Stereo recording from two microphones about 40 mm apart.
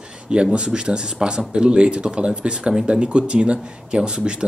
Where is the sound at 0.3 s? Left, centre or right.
Right.